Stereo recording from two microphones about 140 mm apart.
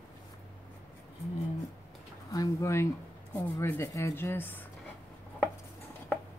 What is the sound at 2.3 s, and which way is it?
Speech, 20° left (ahead or behind).